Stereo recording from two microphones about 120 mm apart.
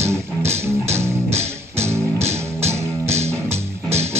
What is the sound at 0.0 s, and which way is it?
Music, 20° right (ahead or behind).